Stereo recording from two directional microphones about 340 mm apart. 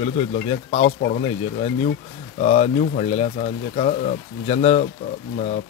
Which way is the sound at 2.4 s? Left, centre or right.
Centre.